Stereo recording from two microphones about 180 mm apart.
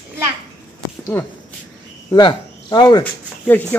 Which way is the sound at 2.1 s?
20° left (ahead or behind).